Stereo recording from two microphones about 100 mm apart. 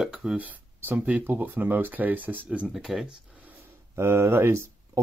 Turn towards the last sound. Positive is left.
turn(degrees=-25)  # may be behind; listen again after turning